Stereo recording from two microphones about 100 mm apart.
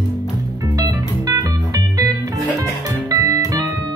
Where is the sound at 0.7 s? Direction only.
40° right (ahead or behind).